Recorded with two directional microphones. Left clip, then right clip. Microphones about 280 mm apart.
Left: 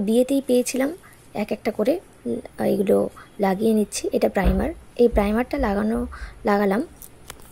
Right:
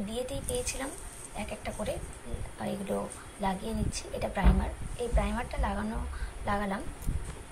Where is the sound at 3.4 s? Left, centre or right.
Centre.